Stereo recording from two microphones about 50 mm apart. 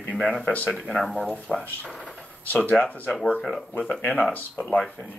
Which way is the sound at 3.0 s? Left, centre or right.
Centre.